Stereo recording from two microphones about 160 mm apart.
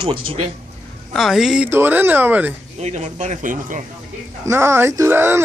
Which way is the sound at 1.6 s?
15° right (ahead or behind).